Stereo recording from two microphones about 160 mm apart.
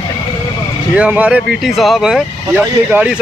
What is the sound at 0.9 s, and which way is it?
Speech, 10° right (ahead or behind).